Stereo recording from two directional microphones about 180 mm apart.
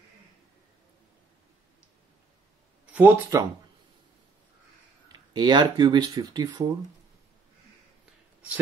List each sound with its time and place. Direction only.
2.9 s speech: 15° right (ahead or behind)
5.3 s speech: 25° right (ahead or behind)